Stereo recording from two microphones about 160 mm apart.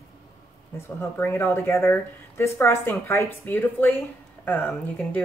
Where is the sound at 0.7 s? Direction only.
15° left (ahead or behind).